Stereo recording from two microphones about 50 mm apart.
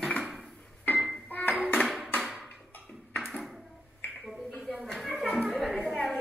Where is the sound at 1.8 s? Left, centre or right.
Centre.